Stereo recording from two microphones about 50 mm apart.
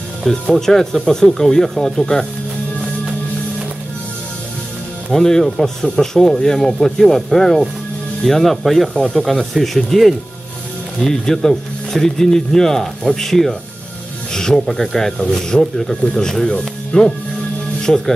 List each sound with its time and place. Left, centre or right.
0.2 s speech: centre
5.1 s speech: centre
14.3 s snake: centre
14.8 s speech: centre
17.8 s speech: centre